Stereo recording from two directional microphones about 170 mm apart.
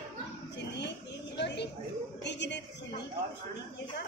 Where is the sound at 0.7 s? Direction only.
90° left.